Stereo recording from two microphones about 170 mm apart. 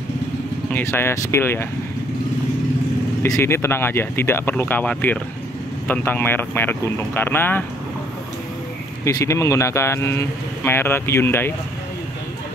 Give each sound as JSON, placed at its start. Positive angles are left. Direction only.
{"t": 0.7, "sound": "speech", "side_deg": 10}
{"t": 3.2, "sound": "speech", "side_deg": 15}
{"t": 9.0, "sound": "speech", "side_deg": 15}